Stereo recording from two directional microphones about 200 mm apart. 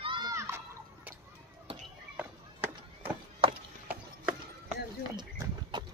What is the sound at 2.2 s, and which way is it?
Run, 10° right (ahead or behind).